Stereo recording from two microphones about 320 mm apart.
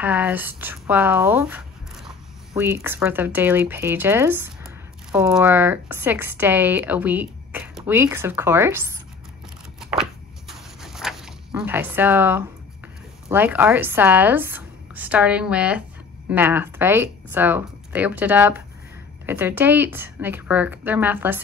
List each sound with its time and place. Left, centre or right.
0.0 s speech: centre
9.8 s a sound: centre
10.5 s zipper: centre
13.3 s speech: centre